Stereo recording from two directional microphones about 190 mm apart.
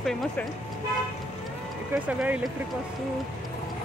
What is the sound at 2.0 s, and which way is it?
Speech, 5° right (ahead or behind).